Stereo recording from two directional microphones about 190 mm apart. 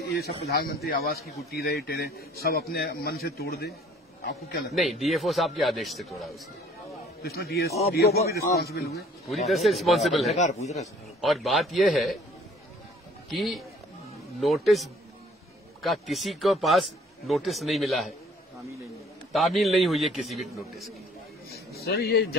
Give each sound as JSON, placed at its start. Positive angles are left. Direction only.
{"t": 0.1, "sound": "a man's voice", "side_deg": 55}
{"t": 4.7, "sound": "a man's voice", "side_deg": 0}
{"t": 7.2, "sound": "a man's voice", "side_deg": 55}
{"t": 9.5, "sound": "a man's voice", "side_deg": 0}
{"t": 10.3, "sound": "speech", "side_deg": 35}
{"t": 11.1, "sound": "a man's voice", "side_deg": 0}
{"t": 13.3, "sound": "a man's voice", "side_deg": 0}
{"t": 19.3, "sound": "a man's voice", "side_deg": 0}
{"t": 21.8, "sound": "a man's voice", "side_deg": 55}